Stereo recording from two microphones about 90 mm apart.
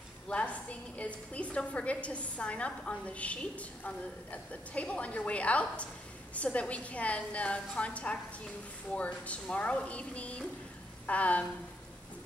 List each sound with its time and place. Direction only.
0.3 s a woman's voice: 15° left (ahead or behind)